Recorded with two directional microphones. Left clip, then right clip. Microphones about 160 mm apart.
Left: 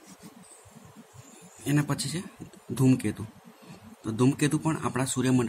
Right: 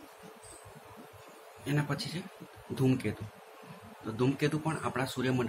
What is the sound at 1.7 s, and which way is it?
Speech, 60° left (ahead or behind).